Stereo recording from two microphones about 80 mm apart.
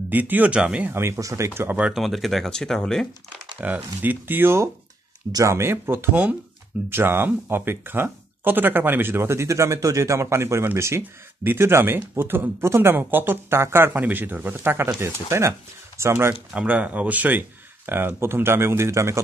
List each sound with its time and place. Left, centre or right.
0.1 s speech: right
0.9 s speech: right
2.0 s speech: centre
3.6 s speech: right
16.5 s speech: centre; by 19.2 s right